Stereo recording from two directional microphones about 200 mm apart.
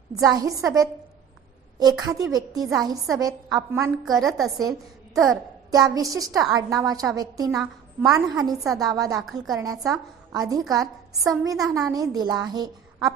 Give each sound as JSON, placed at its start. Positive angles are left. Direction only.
{"t": 0.2, "sound": "a woman's voice", "side_deg": -15}
{"t": 4.2, "sound": "a woman's voice", "side_deg": 0}
{"t": 4.6, "sound": "a woman's voice", "side_deg": -15}